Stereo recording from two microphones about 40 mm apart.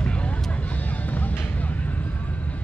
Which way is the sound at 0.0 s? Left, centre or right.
Left.